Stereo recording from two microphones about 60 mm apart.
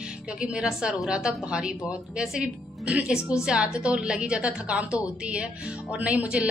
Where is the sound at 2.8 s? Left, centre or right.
Centre.